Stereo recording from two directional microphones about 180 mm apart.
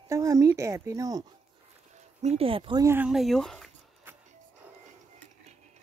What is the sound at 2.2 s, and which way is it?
Speech, 35° right (ahead or behind).